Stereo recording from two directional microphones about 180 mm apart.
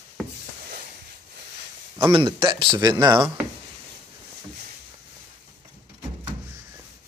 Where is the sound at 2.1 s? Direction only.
25° right (ahead or behind).